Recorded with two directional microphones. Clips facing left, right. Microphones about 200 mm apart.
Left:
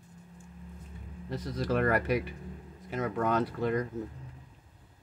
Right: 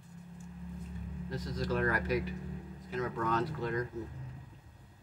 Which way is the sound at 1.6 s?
60° left (ahead or behind).